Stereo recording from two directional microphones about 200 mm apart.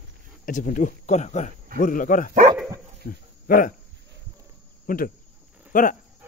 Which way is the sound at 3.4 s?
45° left (ahead or behind).